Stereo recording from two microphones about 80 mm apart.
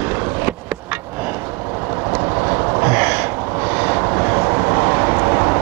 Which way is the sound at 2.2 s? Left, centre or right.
Right.